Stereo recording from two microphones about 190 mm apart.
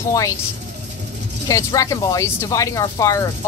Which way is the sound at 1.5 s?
20° left (ahead or behind).